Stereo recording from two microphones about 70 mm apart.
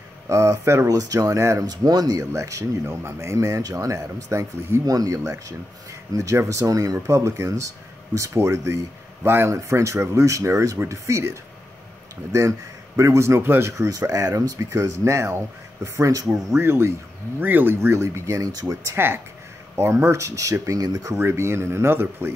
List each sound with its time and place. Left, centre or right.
0.3 s speech: right
0.8 s speech: right
1.7 s speech: right
2.3 s speech: right
13.8 s speech: right
16.5 s speech: right
18.9 s speech: right
21.2 s speech: right